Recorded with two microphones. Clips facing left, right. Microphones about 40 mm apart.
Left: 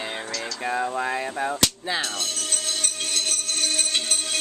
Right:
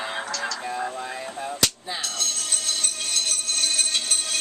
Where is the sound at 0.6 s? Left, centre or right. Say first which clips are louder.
Left 4 dB; left.